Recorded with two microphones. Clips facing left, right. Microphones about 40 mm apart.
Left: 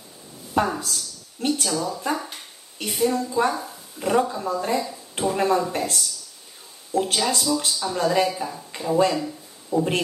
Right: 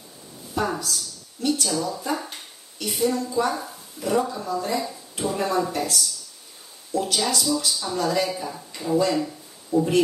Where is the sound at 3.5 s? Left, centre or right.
Centre.